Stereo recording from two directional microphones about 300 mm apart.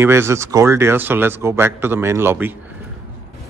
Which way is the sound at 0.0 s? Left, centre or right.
Centre.